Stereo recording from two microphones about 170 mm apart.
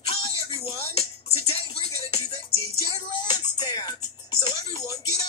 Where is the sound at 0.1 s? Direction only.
30° left (ahead or behind).